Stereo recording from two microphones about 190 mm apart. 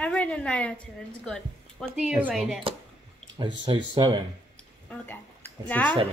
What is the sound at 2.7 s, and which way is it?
Speech, 30° right (ahead or behind).